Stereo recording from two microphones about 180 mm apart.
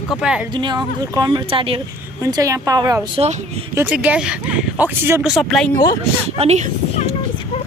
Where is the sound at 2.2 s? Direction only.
20° right (ahead or behind).